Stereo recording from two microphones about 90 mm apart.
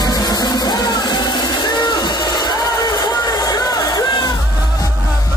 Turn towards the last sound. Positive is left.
turn(degrees=55)  # may be behind; listen again after turning